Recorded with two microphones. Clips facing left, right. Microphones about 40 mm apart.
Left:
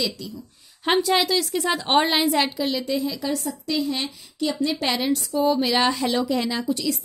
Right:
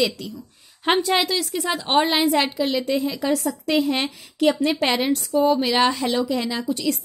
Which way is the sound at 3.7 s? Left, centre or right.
Right.